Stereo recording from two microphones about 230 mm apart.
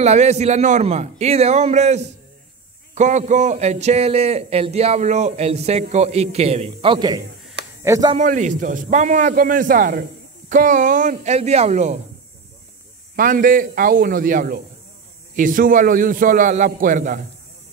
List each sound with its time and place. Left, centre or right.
0.0 s a man's voice: right
8.2 s a man's voice: right
13.1 s a man's voice: right